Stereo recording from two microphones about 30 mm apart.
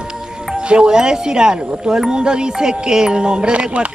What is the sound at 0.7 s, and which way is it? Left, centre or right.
Speech, right.